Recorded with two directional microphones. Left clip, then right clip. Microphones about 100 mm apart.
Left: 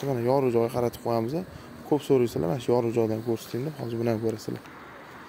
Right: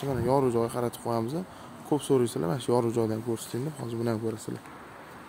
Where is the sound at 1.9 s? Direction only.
15° right (ahead or behind).